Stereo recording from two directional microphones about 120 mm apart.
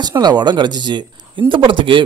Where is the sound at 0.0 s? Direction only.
35° right (ahead or behind).